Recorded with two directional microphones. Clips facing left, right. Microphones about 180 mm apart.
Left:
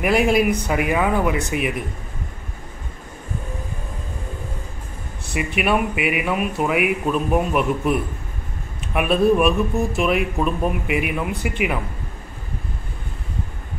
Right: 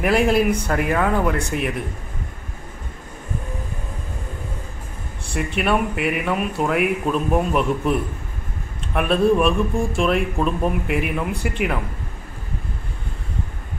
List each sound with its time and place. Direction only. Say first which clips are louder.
0.0 s speech: even; 5° left (ahead or behind)
5.3 s speech: even; 5° left (ahead or behind)